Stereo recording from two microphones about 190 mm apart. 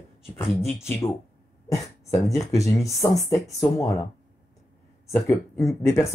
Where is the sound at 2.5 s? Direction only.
15° left (ahead or behind).